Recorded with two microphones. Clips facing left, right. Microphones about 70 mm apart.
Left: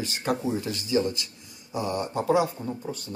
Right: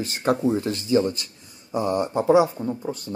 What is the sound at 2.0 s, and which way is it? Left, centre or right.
Speech, right.